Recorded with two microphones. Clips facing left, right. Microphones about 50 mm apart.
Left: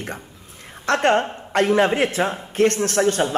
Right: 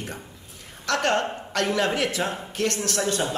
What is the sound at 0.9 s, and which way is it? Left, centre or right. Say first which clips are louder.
A woman's voice: left 5 dB; left.